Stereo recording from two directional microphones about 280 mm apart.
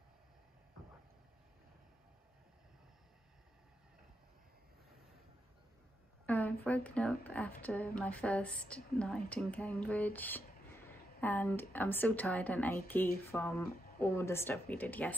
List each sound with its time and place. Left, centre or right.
6.2 s a woman's voice: centre